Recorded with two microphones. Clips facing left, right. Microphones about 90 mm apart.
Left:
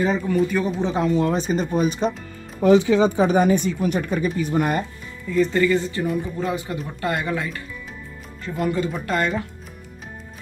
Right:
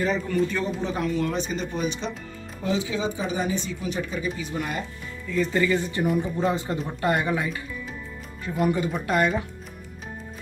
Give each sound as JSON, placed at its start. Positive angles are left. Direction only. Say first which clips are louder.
{"t": 0.0, "sound": "a man's voice", "louder": "left 4 dB", "side_deg": 15}
{"t": 0.7, "sound": "speech", "louder": "left 5 dB", "side_deg": 20}
{"t": 2.9, "sound": "speech", "louder": "left 10 dB", "side_deg": 60}
{"t": 5.5, "sound": "speech", "louder": "left 4 dB", "side_deg": -10}